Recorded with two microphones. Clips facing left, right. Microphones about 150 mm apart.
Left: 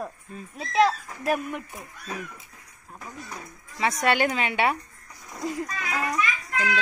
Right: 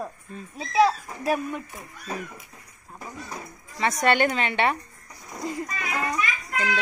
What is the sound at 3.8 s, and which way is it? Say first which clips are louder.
A woman's voice: right 2 dB; 5° left (ahead or behind).